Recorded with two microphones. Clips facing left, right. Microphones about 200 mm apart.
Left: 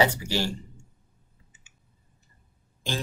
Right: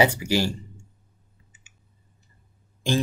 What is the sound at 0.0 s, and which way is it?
Speech, 10° right (ahead or behind).